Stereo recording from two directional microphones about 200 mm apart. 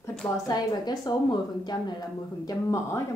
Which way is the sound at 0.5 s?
20° left (ahead or behind).